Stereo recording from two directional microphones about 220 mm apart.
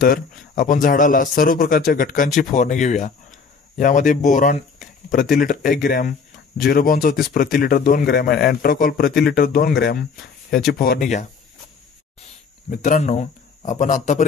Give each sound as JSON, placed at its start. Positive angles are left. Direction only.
{"t": 0.0, "sound": "a man's voice", "side_deg": 40}